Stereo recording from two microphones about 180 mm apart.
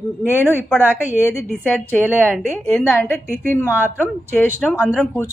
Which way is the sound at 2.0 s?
10° right (ahead or behind).